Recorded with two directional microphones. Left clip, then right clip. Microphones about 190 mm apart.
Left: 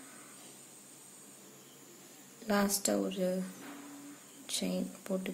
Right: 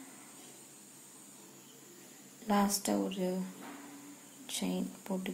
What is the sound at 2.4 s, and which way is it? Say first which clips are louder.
Speech: even; 15° left (ahead or behind).